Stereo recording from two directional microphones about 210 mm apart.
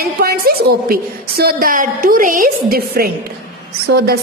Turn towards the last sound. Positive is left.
turn(degrees=-50)  # may be behind; listen again after turning